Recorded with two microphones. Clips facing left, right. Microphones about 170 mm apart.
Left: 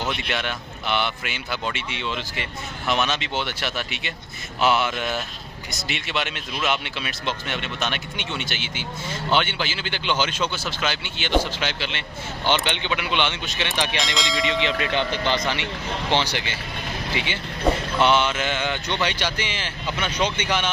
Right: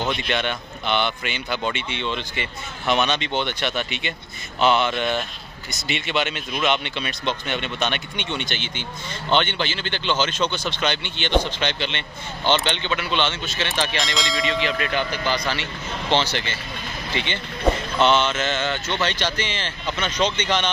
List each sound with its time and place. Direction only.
0.3 s speech: 5° left (ahead or behind)
14.1 s speech: centre (ahead or behind)
14.4 s speech: 20° left (ahead or behind)